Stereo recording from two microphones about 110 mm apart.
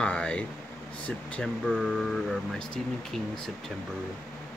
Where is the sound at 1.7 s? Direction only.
Centre (ahead or behind).